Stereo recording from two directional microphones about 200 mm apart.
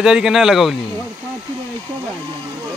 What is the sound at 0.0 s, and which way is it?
Speech, centre (ahead or behind).